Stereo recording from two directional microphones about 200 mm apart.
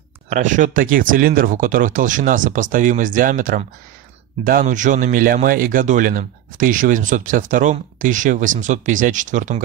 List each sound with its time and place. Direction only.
0.3 s speech: 40° right (ahead or behind)